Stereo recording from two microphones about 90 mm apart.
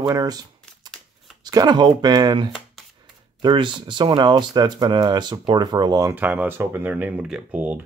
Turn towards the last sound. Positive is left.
turn(degrees=-10)  # may be behind; listen again after turning